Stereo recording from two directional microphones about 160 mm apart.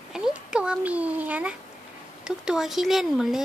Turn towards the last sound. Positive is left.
turn(degrees=0)  # may be behind; listen again after turning